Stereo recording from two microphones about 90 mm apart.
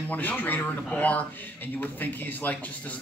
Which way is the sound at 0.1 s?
20° left (ahead or behind).